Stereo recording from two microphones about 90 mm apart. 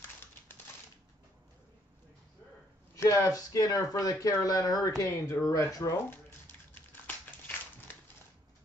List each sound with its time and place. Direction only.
3.0 s speech: 35° left (ahead or behind)